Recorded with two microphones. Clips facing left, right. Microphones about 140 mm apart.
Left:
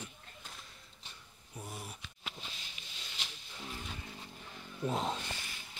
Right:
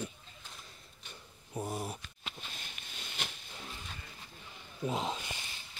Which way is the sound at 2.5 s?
55° right (ahead or behind).